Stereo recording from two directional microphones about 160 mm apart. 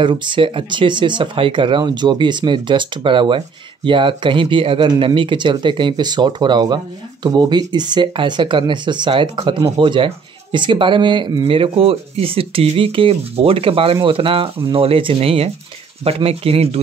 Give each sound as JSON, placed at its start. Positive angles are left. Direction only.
{"t": 0.0, "sound": "speech", "side_deg": -30}